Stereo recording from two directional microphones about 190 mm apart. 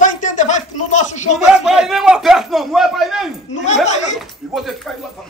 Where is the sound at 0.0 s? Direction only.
40° left (ahead or behind).